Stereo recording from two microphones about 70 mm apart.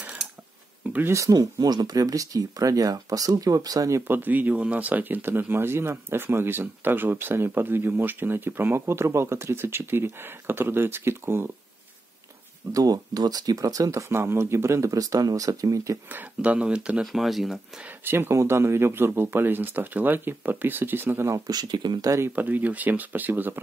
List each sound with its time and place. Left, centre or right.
0.8 s a sound: right
1.1 s speech: right
4.1 s speech: right
12.7 s speech: right
16.3 s speech: centre
17.0 s speech: centre
17.8 s speech: right
21.5 s speech: right
22.3 s speech: right